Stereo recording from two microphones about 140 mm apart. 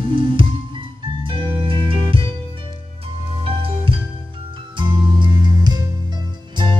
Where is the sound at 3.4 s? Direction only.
40° right (ahead or behind).